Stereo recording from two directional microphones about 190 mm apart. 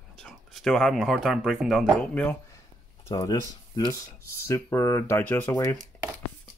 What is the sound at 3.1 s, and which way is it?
Speech, 20° left (ahead or behind).